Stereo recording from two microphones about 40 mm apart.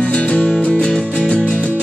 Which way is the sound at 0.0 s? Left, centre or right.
Left.